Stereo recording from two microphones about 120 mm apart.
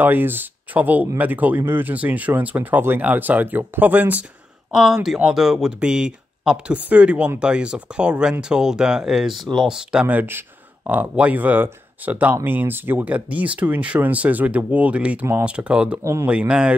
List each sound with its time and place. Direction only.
0.0 s speech: 15° right (ahead or behind)
16.0 s speech: 25° right (ahead or behind)
16.3 s speech: 10° right (ahead or behind)